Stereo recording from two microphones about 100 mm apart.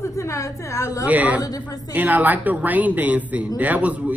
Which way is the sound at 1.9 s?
15° right (ahead or behind).